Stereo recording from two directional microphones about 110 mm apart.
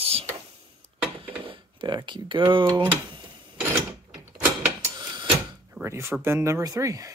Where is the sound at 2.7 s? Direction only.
20° right (ahead or behind).